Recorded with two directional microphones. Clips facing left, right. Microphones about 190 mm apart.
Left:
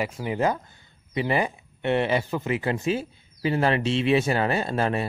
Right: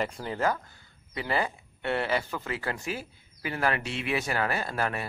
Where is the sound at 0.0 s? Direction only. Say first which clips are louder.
Left 4 dB; 10° left (ahead or behind).